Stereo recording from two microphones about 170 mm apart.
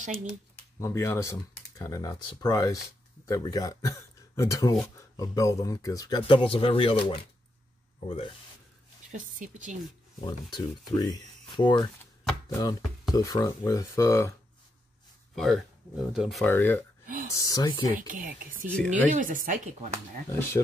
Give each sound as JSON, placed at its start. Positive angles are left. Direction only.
{"t": 0.0, "sound": "speech", "side_deg": -45}
{"t": 0.7, "sound": "speech", "side_deg": 15}
{"t": 9.1, "sound": "speech", "side_deg": -50}
{"t": 10.2, "sound": "speech", "side_deg": 25}
{"t": 15.3, "sound": "speech", "side_deg": 5}
{"t": 16.4, "sound": "speech", "side_deg": 10}
{"t": 17.9, "sound": "speech", "side_deg": -55}
{"t": 20.2, "sound": "speech", "side_deg": 15}